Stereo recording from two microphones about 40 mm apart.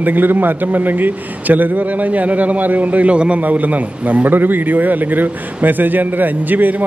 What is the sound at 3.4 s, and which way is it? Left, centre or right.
A man's voice, right.